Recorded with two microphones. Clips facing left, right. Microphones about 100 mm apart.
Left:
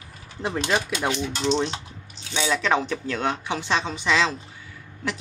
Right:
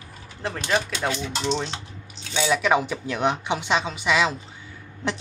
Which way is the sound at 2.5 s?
10° right (ahead or behind).